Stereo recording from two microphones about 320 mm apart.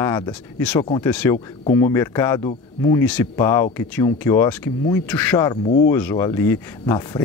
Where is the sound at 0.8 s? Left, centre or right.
Centre.